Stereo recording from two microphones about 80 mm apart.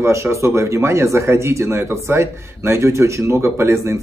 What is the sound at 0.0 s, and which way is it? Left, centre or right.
Speech, right.